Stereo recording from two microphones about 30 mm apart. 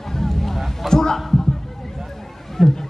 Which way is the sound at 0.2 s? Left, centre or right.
Centre.